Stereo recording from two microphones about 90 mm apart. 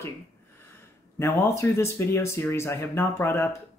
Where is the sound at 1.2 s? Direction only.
30° left (ahead or behind).